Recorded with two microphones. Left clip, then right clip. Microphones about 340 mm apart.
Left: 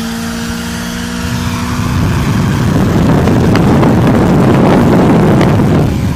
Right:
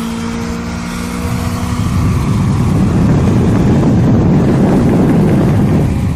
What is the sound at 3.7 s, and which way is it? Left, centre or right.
Vehicle, left.